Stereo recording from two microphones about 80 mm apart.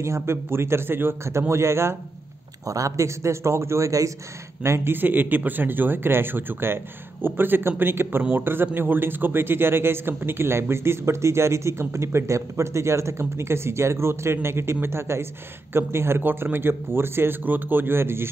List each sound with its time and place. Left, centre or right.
0.0 s a man's voice: right
2.6 s a man's voice: right